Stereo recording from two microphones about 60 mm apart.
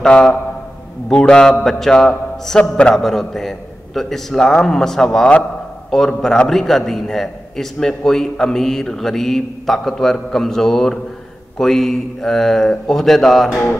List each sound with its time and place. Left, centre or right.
0.0 s a man's voice: centre
1.5 s a man's voice: centre